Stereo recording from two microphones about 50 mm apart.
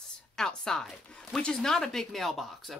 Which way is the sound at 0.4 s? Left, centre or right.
Centre.